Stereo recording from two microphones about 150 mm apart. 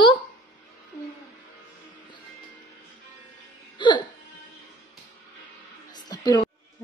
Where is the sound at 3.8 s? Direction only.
30° left (ahead or behind).